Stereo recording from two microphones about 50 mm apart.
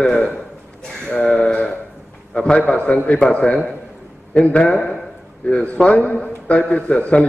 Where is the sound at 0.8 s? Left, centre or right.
Centre.